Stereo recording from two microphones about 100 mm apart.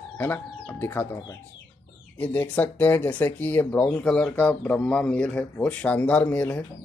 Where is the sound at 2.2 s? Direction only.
20° left (ahead or behind).